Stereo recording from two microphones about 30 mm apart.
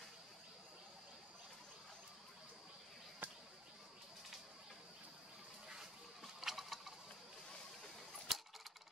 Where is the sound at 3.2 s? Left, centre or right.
Right.